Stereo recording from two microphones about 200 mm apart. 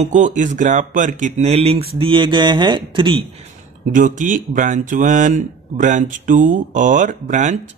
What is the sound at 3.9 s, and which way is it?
Speech, 40° right (ahead or behind).